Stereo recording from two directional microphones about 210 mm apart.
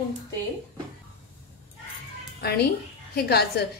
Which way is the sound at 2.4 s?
50° left (ahead or behind).